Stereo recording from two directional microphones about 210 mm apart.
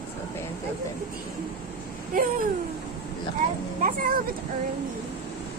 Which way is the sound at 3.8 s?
40° right (ahead or behind).